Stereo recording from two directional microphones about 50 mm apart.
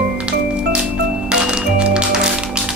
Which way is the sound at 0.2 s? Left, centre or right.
Centre.